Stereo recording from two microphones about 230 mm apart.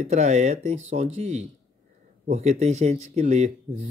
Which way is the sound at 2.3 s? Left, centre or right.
Right.